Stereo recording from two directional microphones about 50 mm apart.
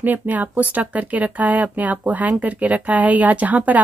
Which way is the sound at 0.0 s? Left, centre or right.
Right.